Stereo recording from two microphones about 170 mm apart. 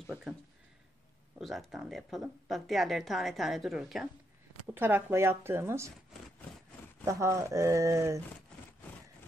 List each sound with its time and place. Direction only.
1.4 s speech: centre (ahead or behind)
4.6 s speech: 10° right (ahead or behind)
7.1 s speech: 15° right (ahead or behind)